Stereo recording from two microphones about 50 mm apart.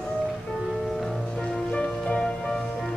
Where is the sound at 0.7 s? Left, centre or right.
Centre.